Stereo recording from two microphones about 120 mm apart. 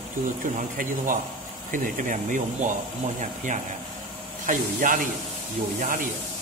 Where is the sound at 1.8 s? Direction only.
90° right.